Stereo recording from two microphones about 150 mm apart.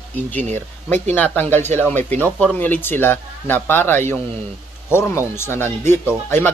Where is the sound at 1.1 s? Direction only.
10° left (ahead or behind).